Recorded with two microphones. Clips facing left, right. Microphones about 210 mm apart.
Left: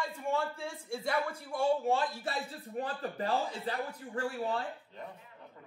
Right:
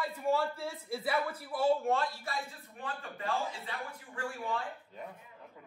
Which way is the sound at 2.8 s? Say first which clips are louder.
Left 6 dB; 40° left (ahead or behind).